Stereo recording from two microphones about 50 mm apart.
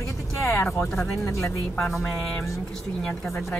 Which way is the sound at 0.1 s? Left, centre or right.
Left.